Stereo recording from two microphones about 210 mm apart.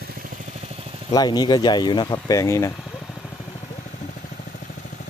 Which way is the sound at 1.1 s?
20° left (ahead or behind).